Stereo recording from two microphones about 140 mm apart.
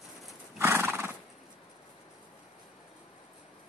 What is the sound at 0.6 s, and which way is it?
Horse, 15° right (ahead or behind).